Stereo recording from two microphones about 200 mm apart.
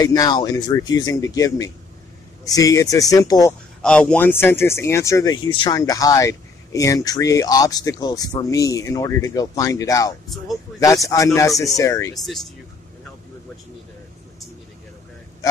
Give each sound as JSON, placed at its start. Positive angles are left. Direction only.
{"t": 0.0, "sound": "speech", "side_deg": 20}
{"t": 3.8, "sound": "speech", "side_deg": 5}
{"t": 12.3, "sound": "speech", "side_deg": 0}